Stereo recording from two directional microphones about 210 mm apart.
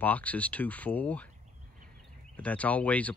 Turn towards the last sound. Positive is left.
turn(degrees=5)  # may be behind; listen again after turning